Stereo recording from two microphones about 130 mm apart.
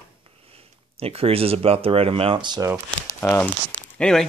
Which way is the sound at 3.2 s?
20° left (ahead or behind).